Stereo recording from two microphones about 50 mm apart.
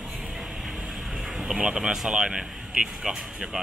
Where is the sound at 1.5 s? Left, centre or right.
Centre.